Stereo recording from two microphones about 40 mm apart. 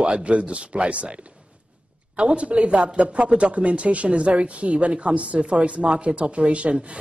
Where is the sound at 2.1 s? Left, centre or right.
Right.